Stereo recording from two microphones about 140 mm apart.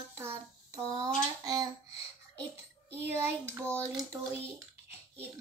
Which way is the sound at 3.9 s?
20° right (ahead or behind).